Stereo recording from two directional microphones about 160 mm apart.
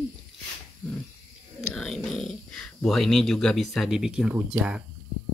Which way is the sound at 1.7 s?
5° left (ahead or behind).